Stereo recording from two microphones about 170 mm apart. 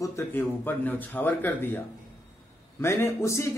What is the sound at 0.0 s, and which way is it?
A man's voice, 15° left (ahead or behind).